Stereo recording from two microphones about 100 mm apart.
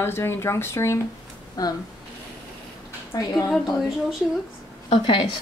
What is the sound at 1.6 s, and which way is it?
Speech, 35° left (ahead or behind).